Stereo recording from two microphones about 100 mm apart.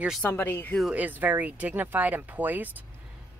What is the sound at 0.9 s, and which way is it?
Speech, 15° right (ahead or behind).